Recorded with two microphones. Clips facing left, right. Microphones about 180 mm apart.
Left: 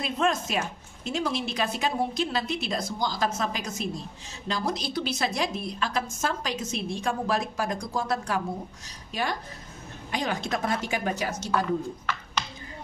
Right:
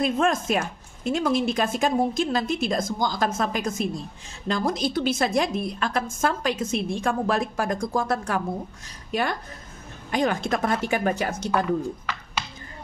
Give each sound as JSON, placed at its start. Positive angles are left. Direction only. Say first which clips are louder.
{"t": 0.0, "sound": "a woman's voice", "louder": "right 4 dB", "side_deg": -50}